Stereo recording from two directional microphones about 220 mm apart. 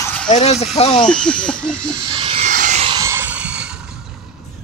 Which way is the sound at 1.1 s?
5° left (ahead or behind).